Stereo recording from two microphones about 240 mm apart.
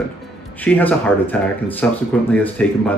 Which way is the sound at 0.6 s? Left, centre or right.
Centre.